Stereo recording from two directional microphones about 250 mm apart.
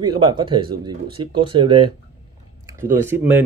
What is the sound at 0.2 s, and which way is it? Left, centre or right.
Speech, centre.